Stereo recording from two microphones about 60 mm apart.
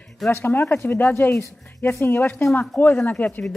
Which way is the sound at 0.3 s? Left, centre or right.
Left.